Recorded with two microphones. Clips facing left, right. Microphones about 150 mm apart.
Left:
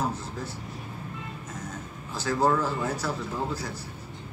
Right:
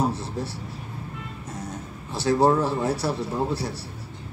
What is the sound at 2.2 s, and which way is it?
A man's voice, 35° right (ahead or behind).